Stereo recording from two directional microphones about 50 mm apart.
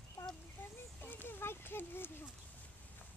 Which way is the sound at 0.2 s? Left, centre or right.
Left.